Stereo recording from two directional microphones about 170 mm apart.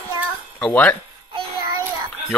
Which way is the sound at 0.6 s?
10° left (ahead or behind).